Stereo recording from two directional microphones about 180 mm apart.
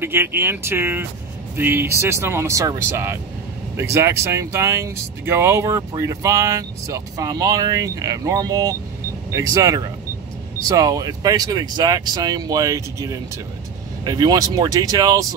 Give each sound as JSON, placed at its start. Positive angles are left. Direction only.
{"t": 0.0, "sound": "speech", "side_deg": -10}